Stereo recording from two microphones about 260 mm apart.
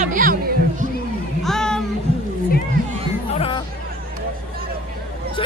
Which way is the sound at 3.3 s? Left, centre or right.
Left.